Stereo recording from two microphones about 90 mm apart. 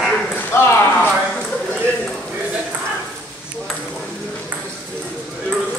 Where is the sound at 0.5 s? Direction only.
25° left (ahead or behind).